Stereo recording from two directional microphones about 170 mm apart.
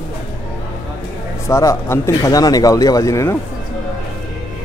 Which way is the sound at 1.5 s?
15° left (ahead or behind).